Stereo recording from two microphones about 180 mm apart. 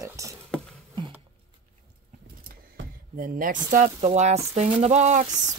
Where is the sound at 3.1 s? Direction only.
50° right (ahead or behind).